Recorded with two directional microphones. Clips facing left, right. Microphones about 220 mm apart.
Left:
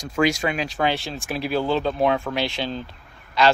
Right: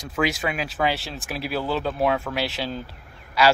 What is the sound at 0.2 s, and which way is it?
Speech, 5° right (ahead or behind).